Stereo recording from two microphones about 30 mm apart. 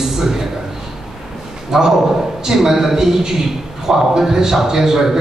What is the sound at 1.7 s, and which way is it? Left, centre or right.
A man's voice, centre.